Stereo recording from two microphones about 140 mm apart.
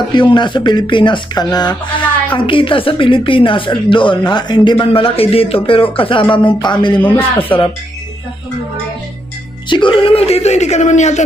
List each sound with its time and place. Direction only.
0.1 s speech: 35° left (ahead or behind)
7.0 s a man's voice: 15° left (ahead or behind)
7.4 s speech: 40° left (ahead or behind)
9.7 s speech: 35° left (ahead or behind); by 11.2 s 55° left (ahead or behind)